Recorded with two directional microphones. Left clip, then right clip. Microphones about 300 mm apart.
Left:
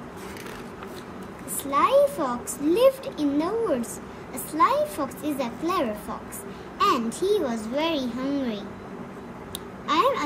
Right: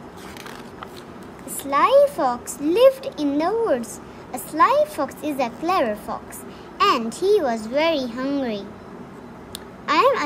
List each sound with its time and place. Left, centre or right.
1.6 s a child's voice: centre
6.8 s babbling: centre
7.2 s a child's voice: centre
9.8 s speech: centre